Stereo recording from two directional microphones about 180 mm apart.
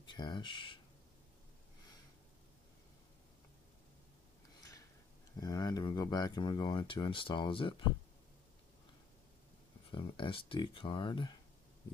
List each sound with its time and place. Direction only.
0.0 s speech: 25° left (ahead or behind)
5.4 s speech: 20° left (ahead or behind)
9.8 s speech: 30° left (ahead or behind)